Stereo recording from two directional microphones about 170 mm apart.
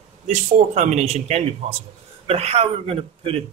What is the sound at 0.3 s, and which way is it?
Speech, 45° right (ahead or behind).